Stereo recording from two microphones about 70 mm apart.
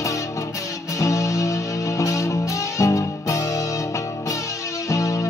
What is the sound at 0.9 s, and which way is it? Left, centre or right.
Music, left.